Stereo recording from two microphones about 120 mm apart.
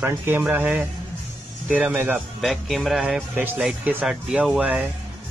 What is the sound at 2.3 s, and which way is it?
Speech, centre (ahead or behind).